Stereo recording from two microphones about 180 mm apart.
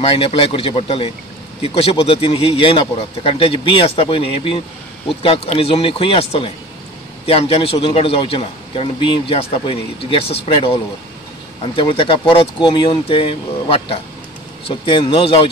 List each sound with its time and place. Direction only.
0.0 s a man's voice: 30° left (ahead or behind)